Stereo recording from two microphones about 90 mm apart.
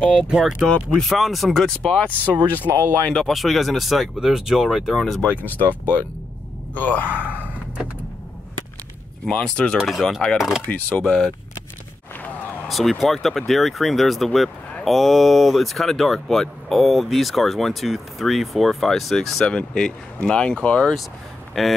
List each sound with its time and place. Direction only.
0.1 s speech: 5° right (ahead or behind)
5.2 s speech: 20° left (ahead or behind)
9.2 s speech: 10° left (ahead or behind)
9.8 s speech: centre (ahead or behind)
10.7 s speech: 15° left (ahead or behind)
12.6 s speech: centre (ahead or behind)
21.5 s speech: centre (ahead or behind)